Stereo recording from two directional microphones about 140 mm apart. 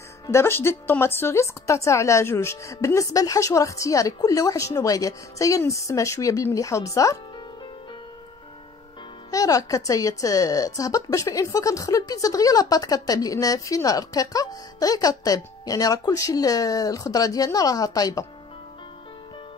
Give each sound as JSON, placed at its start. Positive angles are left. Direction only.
{"t": 0.3, "sound": "a woman's voice", "side_deg": 15}
{"t": 9.3, "sound": "a woman's voice", "side_deg": 25}